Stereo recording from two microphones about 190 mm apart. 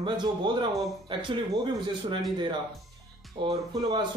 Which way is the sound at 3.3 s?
20° right (ahead or behind).